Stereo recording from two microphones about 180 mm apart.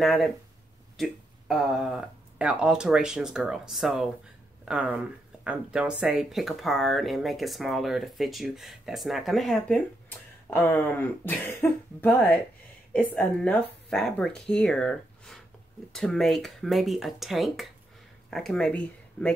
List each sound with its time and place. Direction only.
0.0 s speech: centre (ahead or behind)